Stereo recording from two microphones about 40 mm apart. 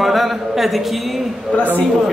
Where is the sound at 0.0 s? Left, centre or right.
Centre.